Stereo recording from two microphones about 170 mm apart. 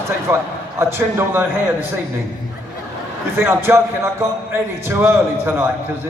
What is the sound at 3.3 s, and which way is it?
A man's voice, 15° right (ahead or behind).